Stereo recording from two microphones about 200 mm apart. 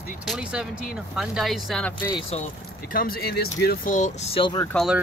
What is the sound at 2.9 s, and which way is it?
Speech, 50° left (ahead or behind).